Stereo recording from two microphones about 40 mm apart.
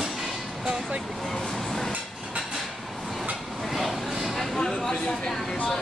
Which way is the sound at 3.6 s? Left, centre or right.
Centre.